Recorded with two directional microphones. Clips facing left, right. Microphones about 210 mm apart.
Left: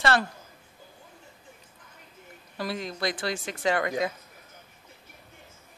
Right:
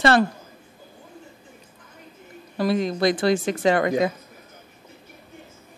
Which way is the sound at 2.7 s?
20° right (ahead or behind).